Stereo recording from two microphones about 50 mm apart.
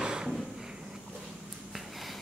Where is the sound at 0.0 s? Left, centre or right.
Centre.